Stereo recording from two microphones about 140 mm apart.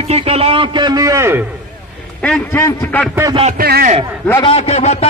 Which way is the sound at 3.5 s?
90° right.